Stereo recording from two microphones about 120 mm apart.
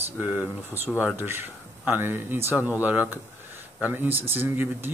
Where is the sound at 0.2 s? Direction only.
10° right (ahead or behind).